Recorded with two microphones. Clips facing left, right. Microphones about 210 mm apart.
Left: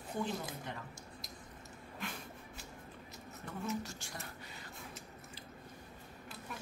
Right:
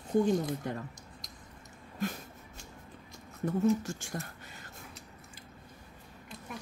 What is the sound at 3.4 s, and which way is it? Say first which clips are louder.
Speech: right 12 dB; 45° right (ahead or behind).